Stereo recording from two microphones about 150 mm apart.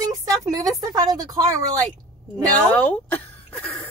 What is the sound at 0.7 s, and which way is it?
A woman's voice, 25° right (ahead or behind).